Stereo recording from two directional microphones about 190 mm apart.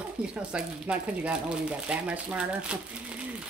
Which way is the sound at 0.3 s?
5° right (ahead or behind).